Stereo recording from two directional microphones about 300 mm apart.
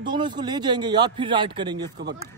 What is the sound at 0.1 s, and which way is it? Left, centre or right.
A man's voice, centre.